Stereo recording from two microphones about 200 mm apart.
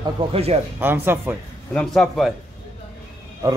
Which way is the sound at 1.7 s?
Centre (ahead or behind).